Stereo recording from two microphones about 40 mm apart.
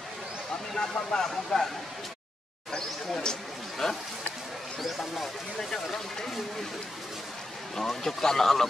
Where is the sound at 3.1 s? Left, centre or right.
Centre.